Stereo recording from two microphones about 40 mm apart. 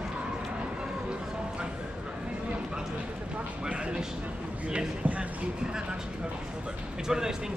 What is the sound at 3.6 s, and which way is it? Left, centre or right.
Vehicle, right.